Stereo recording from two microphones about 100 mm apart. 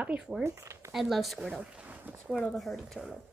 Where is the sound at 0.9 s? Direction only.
Centre (ahead or behind).